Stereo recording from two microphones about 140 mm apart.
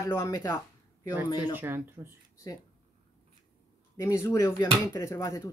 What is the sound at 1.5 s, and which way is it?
Speech, 15° right (ahead or behind).